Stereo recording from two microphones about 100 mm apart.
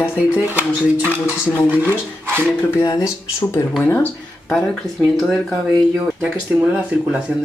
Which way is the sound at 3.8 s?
15° left (ahead or behind).